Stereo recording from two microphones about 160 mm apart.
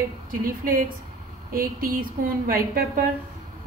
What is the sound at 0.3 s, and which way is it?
A woman's voice, 60° right (ahead or behind).